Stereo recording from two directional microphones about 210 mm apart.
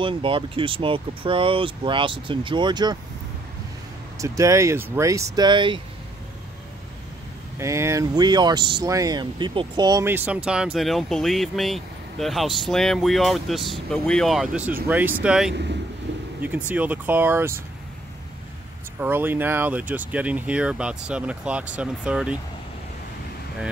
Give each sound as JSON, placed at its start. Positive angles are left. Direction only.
{"t": 0.0, "sound": "speech", "side_deg": -25}
{"t": 4.2, "sound": "speech", "side_deg": -15}
{"t": 7.5, "sound": "speech", "side_deg": -15}
{"t": 18.9, "sound": "speech", "side_deg": -10}